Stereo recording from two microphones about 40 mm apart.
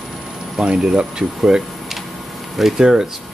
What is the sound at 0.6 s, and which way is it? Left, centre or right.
Speech, centre.